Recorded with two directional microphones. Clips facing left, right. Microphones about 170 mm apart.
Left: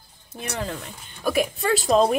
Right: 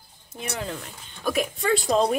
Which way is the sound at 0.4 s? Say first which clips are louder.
Left 2 dB; centre (ahead or behind).